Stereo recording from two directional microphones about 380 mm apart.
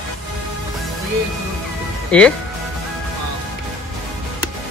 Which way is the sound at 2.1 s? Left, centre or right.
Centre.